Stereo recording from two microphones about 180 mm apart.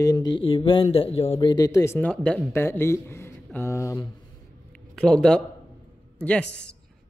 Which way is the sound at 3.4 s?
15° left (ahead or behind).